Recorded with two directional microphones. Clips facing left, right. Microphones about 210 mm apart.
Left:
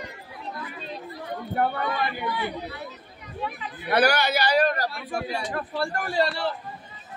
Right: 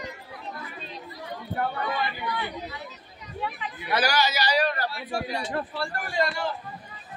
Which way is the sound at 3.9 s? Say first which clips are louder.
Left 3 dB; 60° left (ahead or behind).